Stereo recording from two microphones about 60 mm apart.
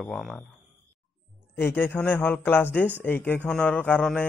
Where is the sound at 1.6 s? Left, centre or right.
Left.